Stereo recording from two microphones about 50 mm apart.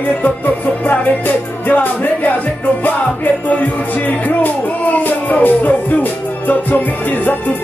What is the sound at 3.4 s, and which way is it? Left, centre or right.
Speech, left.